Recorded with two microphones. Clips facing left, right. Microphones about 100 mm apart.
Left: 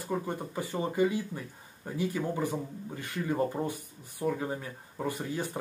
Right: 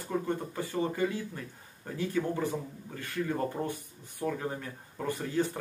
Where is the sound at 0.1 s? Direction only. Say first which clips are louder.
Right 2 dB; 10° left (ahead or behind).